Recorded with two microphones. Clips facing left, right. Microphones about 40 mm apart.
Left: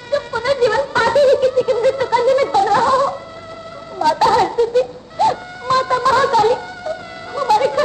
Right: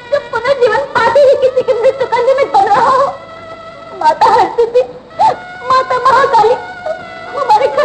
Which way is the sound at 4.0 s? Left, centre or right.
Right.